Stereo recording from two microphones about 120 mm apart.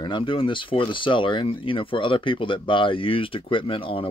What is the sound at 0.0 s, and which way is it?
Speech, 45° left (ahead or behind).